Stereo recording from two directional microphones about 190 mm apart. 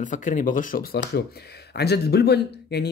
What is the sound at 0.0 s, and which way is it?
Speech, 45° left (ahead or behind).